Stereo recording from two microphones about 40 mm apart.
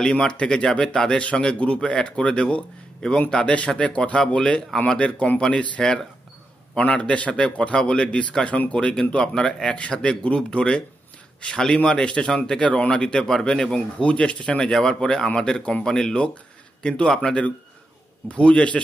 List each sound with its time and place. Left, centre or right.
0.0 s speech: centre
6.8 s a man's voice: left
8.7 s speech: left
9.8 s speech: left
14.6 s speech: centre